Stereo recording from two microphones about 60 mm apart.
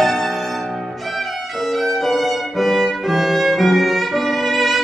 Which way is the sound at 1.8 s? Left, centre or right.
Centre.